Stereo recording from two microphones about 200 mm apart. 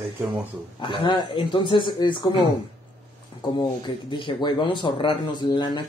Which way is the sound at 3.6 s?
25° left (ahead or behind).